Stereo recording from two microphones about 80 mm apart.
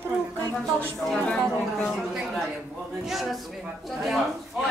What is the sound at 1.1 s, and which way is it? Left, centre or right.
Speech, centre.